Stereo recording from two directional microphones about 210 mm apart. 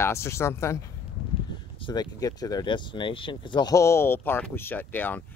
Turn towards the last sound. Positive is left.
turn(degrees=10)  # may be behind; listen again after turning